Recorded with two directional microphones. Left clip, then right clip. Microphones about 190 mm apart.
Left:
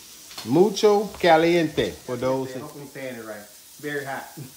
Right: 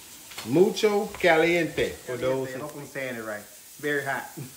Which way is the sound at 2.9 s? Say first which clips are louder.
Right 3 dB; centre (ahead or behind).